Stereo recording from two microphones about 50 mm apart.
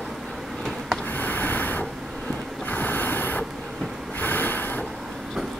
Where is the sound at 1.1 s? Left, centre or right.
Left.